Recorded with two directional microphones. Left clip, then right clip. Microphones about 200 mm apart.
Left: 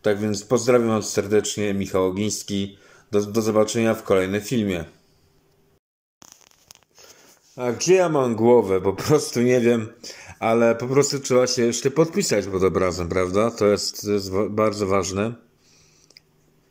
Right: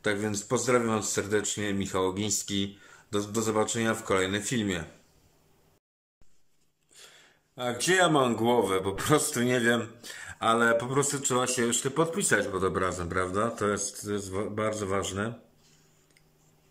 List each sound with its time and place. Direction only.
0.0 s speech: 5° left (ahead or behind)
7.5 s speech: 5° left (ahead or behind)